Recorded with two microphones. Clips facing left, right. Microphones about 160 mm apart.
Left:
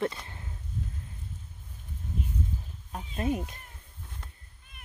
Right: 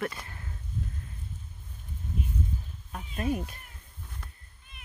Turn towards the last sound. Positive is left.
turn(degrees=25)  # may be behind; listen again after turning